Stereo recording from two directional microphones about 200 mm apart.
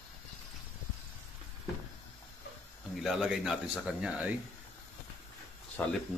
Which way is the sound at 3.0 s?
Centre (ahead or behind).